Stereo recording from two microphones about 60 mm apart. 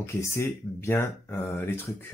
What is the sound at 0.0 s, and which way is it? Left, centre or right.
Speech, left.